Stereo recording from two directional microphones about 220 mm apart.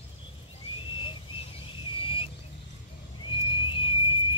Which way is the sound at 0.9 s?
20° left (ahead or behind).